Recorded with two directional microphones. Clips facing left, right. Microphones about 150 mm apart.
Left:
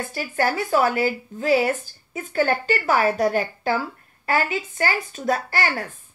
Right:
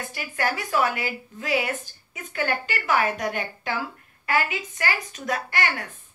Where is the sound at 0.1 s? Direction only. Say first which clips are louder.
Left 4 dB; 30° left (ahead or behind).